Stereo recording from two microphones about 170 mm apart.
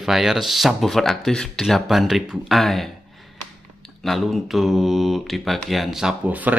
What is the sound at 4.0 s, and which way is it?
Speech, centre (ahead or behind).